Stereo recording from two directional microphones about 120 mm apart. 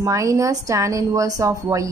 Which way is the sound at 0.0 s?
25° right (ahead or behind).